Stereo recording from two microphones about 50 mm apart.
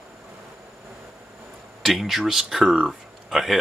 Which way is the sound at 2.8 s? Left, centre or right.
Centre.